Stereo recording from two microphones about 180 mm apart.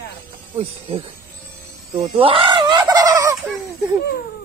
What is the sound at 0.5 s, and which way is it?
Speech, 30° right (ahead or behind).